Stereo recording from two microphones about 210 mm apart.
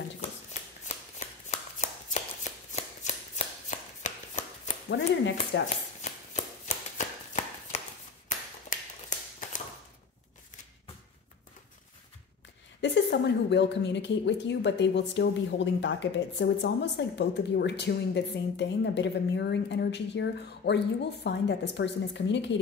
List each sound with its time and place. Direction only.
0.2 s shuffling cards: 30° left (ahead or behind)
4.0 s chopping: 35° left (ahead or behind)
4.8 s speech: 60° left (ahead or behind)
5.9 s chopping: 35° left (ahead or behind)
8.7 s a sound: 35° left (ahead or behind)
12.8 s speech: 55° left (ahead or behind)